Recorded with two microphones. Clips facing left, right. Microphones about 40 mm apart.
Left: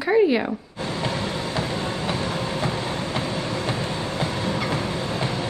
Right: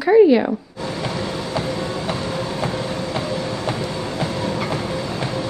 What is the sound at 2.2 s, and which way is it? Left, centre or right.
Train, left.